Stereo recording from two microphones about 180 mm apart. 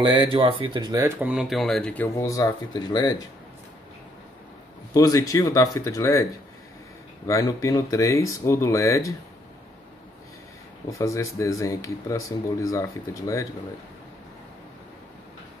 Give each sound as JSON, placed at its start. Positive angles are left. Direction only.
{"t": 0.0, "sound": "speech", "side_deg": -25}
{"t": 1.0, "sound": "speech", "side_deg": -5}
{"t": 2.1, "sound": "speech", "side_deg": 15}
{"t": 4.9, "sound": "speech", "side_deg": 20}
{"t": 7.2, "sound": "speech", "side_deg": 20}
{"t": 10.9, "sound": "speech", "side_deg": 15}